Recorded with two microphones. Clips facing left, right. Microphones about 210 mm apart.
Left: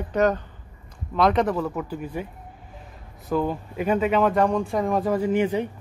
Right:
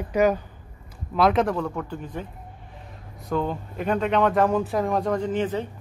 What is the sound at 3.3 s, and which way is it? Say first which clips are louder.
A man's voice: left 2 dB; 5° left (ahead or behind).